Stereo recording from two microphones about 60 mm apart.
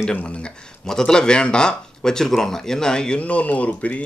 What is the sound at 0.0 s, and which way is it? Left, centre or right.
Speech, centre.